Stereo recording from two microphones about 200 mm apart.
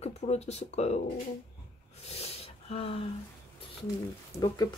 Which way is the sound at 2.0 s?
30° left (ahead or behind).